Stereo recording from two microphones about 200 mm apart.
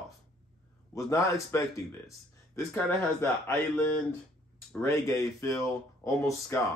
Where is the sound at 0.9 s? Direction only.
15° left (ahead or behind).